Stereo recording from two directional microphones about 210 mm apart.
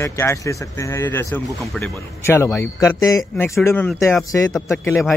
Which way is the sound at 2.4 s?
15° left (ahead or behind).